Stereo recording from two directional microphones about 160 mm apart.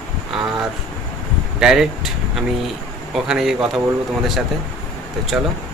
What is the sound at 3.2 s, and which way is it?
Speech, 5° right (ahead or behind).